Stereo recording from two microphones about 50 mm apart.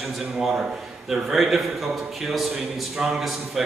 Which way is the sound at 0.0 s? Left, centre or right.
Centre.